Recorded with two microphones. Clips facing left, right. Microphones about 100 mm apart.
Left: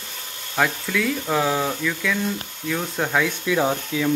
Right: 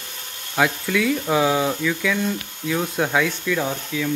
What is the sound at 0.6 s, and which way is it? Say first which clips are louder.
Speech: right 2 dB; centre (ahead or behind).